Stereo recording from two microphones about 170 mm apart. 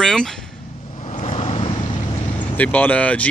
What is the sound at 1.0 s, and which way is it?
Vehicle, 45° left (ahead or behind).